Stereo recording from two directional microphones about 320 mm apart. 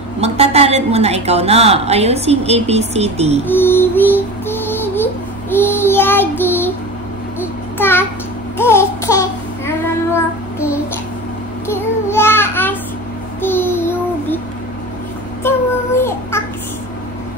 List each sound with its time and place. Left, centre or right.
0.2 s a woman's voice: centre
3.4 s music: centre
7.8 s a child's voice: centre
8.5 s child singing: centre
11.6 s child singing: centre
13.4 s a sound: centre
16.0 s child singing: centre